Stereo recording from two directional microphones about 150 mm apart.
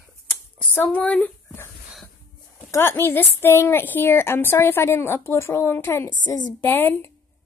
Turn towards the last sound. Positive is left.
turn(degrees=15)  # may be behind; listen again after turning